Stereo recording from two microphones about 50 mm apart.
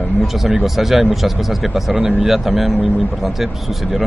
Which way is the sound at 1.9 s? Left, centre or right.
Right.